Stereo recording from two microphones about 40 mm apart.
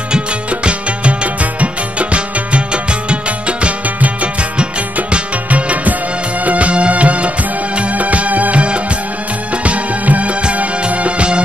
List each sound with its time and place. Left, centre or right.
0.1 s music: right